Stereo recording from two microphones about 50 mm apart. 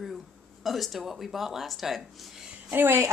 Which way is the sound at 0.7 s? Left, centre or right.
Centre.